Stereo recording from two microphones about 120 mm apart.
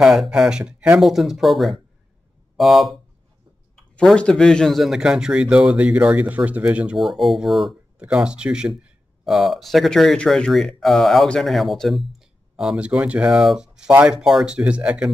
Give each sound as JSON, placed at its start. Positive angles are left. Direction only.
{"t": 0.0, "sound": "speech", "side_deg": -5}
{"t": 3.9, "sound": "speech", "side_deg": 10}